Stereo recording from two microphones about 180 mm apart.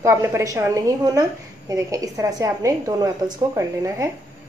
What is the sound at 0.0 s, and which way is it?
A woman's voice, 15° right (ahead or behind).